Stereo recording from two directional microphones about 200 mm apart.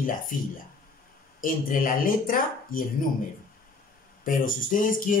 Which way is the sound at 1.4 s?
45° left (ahead or behind).